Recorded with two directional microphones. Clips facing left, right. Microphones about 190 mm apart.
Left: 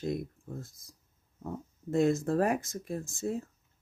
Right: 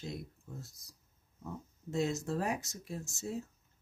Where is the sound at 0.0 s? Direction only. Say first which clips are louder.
Left 9 dB; 55° left (ahead or behind).